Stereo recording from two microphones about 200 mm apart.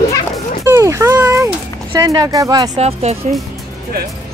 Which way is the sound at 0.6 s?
15° right (ahead or behind).